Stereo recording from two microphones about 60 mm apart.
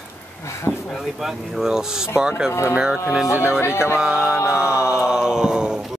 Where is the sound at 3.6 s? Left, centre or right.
Left.